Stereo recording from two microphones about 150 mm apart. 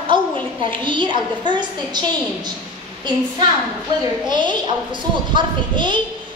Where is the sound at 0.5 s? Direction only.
35° right (ahead or behind).